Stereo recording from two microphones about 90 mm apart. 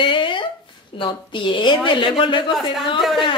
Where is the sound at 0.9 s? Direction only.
70° left (ahead or behind).